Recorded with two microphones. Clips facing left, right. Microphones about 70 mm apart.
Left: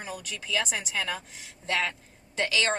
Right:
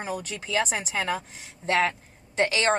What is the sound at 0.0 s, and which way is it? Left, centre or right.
A woman's voice, right.